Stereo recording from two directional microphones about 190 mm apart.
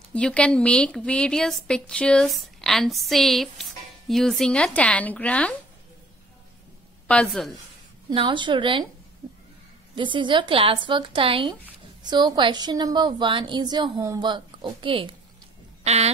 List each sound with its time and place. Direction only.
0.1 s a woman's voice: 5° left (ahead or behind)
7.1 s a woman's voice: centre (ahead or behind)
8.1 s a woman's voice: 25° right (ahead or behind)
9.9 s a woman's voice: 25° right (ahead or behind)